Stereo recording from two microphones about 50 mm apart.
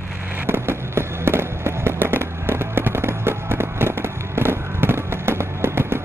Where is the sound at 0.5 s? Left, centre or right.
Right.